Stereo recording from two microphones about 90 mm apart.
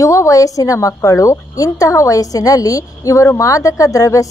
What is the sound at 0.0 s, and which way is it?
A woman's voice, 35° left (ahead or behind).